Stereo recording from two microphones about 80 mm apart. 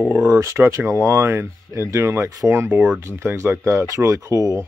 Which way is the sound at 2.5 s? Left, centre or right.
Centre.